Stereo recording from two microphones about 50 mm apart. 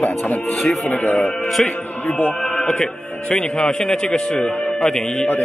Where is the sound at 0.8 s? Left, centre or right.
Left.